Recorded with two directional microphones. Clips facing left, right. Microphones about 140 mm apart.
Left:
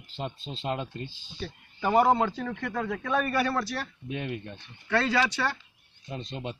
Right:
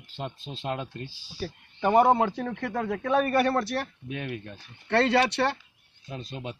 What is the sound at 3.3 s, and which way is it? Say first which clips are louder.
Speech: right 4 dB; 55° right (ahead or behind).